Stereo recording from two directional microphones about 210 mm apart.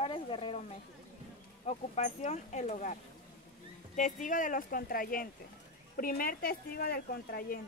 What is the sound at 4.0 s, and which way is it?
Speech, 40° left (ahead or behind).